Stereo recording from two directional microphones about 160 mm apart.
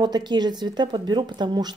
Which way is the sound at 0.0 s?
25° right (ahead or behind).